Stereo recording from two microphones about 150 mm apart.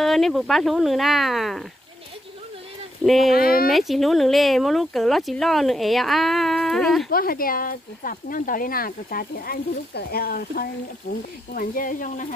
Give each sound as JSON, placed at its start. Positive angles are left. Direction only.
{"t": 0.0, "sound": "speech", "side_deg": 0}
{"t": 3.0, "sound": "speech", "side_deg": 0}
{"t": 3.3, "sound": "speech", "side_deg": 80}
{"t": 3.7, "sound": "speech", "side_deg": 0}
{"t": 7.1, "sound": "speech", "side_deg": 80}